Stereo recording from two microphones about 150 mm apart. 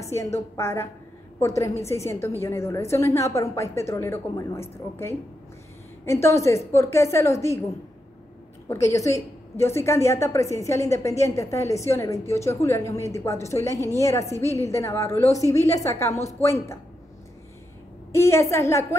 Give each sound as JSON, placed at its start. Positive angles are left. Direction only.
{"t": 0.1, "sound": "a woman's voice", "side_deg": 20}
{"t": 8.6, "sound": "a woman's voice", "side_deg": 20}
{"t": 18.1, "sound": "a woman's voice", "side_deg": 15}